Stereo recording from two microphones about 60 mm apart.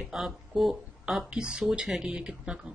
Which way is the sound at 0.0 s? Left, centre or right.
Centre.